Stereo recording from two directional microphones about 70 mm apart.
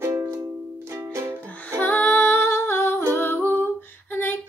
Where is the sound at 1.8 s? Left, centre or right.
Left.